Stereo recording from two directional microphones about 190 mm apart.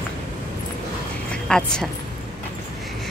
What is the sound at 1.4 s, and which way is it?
Speech, 5° left (ahead or behind).